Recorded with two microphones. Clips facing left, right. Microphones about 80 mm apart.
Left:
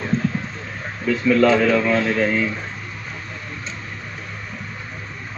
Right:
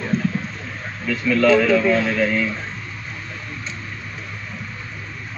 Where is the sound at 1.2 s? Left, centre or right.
Left.